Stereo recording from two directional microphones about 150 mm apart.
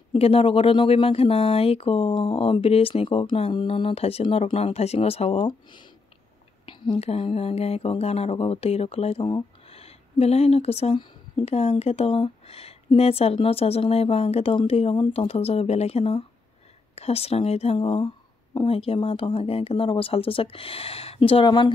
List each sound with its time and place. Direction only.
0.1 s speech: 40° left (ahead or behind)